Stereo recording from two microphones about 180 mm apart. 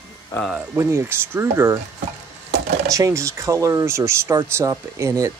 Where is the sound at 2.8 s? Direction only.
20° right (ahead or behind).